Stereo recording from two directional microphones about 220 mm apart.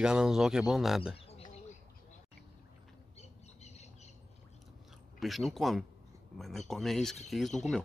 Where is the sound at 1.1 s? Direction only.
25° left (ahead or behind).